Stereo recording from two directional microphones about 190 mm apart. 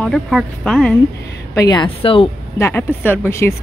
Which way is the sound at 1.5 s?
20° left (ahead or behind).